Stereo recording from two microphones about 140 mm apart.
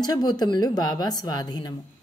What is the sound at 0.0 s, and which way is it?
Speech, 30° left (ahead or behind).